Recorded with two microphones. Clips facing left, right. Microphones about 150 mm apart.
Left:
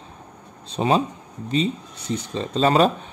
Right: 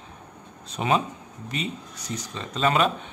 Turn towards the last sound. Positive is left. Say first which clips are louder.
# left 5 dB
turn(degrees=35)  # may be behind; listen again after turning